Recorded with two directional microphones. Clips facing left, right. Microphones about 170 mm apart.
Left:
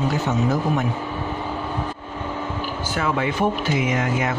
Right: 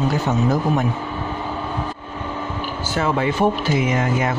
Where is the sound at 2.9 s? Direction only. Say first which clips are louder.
Right 3 dB; 30° right (ahead or behind).